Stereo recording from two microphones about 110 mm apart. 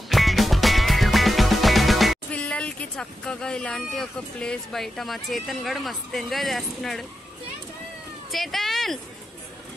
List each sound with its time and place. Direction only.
0.1 s music: centre (ahead or behind)
2.3 s speech: 10° left (ahead or behind)
8.3 s speech: centre (ahead or behind)